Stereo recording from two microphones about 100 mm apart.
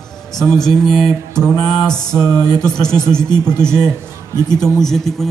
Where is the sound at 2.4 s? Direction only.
40° left (ahead or behind).